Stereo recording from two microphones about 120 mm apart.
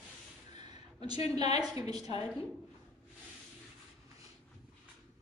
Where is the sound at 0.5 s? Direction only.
35° right (ahead or behind).